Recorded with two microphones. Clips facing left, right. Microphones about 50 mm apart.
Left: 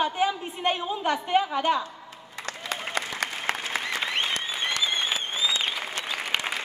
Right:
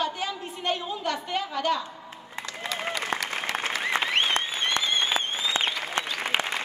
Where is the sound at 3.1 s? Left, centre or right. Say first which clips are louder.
Right 4 dB; right.